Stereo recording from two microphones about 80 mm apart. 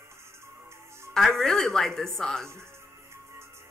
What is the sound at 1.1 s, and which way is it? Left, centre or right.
Speech, centre.